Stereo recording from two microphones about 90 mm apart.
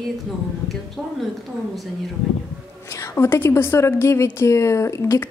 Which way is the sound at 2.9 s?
35° left (ahead or behind).